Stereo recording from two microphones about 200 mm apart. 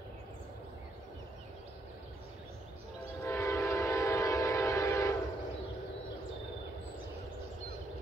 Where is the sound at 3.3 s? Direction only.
15° left (ahead or behind).